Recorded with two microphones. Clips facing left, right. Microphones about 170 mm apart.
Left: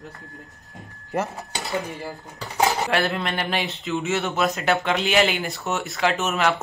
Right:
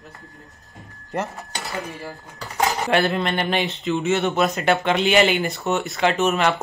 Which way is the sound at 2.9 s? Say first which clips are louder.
Right 3 dB; centre (ahead or behind).